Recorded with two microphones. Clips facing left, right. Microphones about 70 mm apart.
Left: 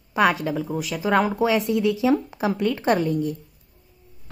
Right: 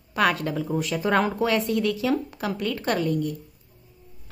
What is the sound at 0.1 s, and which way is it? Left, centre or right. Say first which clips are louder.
Speech: left 3 dB; centre.